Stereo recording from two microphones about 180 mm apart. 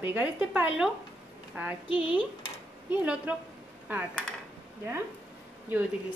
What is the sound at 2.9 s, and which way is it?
Speech, 10° right (ahead or behind).